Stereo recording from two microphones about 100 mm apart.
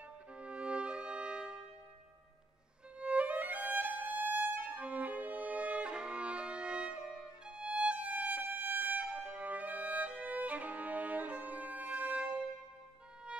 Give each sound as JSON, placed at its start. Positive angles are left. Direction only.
{"t": 0.3, "sound": "music", "side_deg": -10}
{"t": 3.0, "sound": "violin", "side_deg": -15}